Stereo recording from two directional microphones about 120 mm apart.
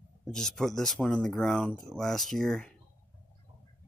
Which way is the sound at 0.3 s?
5° left (ahead or behind).